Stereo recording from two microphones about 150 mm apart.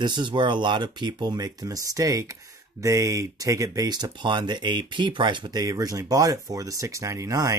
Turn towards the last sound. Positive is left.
turn(degrees=-20)  # may be behind; listen again after turning